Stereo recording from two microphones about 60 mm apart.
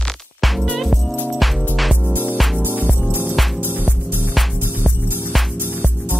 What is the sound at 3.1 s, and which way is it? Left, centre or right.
Music, right.